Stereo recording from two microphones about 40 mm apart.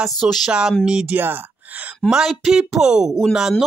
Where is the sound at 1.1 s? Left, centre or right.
Right.